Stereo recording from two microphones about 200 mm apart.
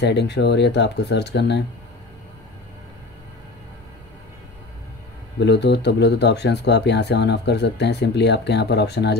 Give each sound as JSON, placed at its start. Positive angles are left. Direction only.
{"t": 0.0, "sound": "speech", "side_deg": 60}
{"t": 5.4, "sound": "speech", "side_deg": 60}